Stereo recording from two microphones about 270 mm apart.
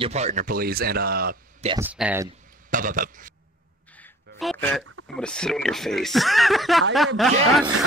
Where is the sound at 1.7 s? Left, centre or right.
Centre.